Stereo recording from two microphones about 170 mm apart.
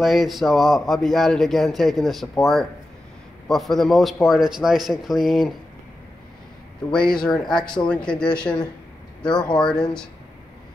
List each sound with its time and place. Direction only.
0.0 s a man's voice: centre (ahead or behind)
6.9 s a man's voice: 5° left (ahead or behind)